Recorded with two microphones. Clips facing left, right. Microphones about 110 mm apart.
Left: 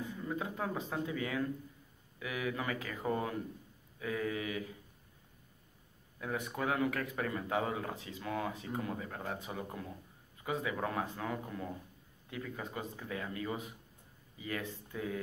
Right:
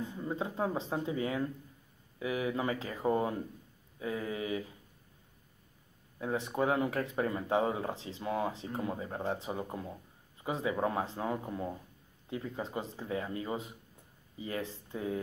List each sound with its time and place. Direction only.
0.1 s speech: 30° right (ahead or behind)
6.1 s speech: 30° right (ahead or behind)